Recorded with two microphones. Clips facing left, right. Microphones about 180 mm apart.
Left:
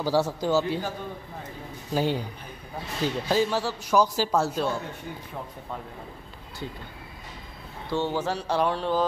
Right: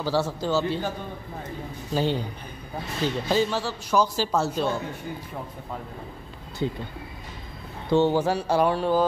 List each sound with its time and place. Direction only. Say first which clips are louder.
0.0 s speech: left 1 dB; 15° left (ahead or behind)
2.0 s speech: right 1 dB; 10° left (ahead or behind)
6.6 s speech: right 9 dB; 20° right (ahead or behind)
7.9 s speech: right 6 dB; 15° right (ahead or behind)